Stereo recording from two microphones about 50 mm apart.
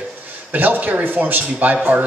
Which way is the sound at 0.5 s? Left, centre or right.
Right.